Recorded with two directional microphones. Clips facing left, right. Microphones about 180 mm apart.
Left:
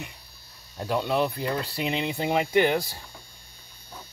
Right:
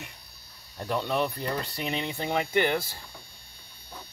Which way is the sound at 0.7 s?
10° left (ahead or behind).